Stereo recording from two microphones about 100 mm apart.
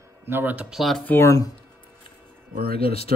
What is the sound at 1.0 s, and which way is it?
Speech, 25° left (ahead or behind).